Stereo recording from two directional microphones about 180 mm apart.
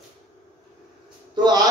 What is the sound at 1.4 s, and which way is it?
Mantra, 20° right (ahead or behind).